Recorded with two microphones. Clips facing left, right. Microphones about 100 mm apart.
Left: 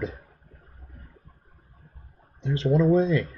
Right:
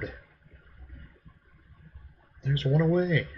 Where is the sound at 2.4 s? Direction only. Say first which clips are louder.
Left 4 dB; 25° left (ahead or behind).